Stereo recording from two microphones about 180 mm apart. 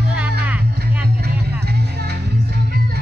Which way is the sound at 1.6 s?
65° right (ahead or behind).